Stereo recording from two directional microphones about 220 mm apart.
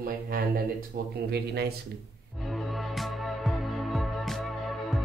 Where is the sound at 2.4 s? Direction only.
Centre (ahead or behind).